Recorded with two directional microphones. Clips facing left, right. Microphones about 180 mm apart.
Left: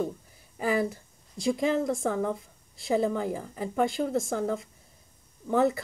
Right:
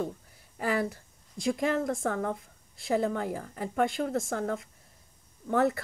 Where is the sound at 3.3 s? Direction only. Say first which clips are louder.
Left 1 dB; 20° left (ahead or behind).